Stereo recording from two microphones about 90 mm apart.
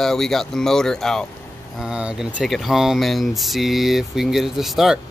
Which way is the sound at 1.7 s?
10° right (ahead or behind).